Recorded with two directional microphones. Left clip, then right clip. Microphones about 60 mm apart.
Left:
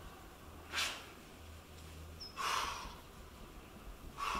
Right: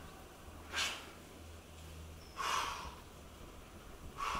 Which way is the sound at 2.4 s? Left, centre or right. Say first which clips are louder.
Even; centre.